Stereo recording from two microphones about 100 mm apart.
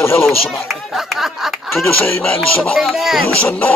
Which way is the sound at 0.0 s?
25° left (ahead or behind).